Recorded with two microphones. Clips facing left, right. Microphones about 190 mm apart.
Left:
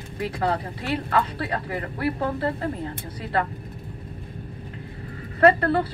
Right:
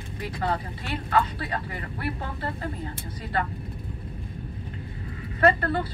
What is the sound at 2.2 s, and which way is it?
Speech, 40° left (ahead or behind).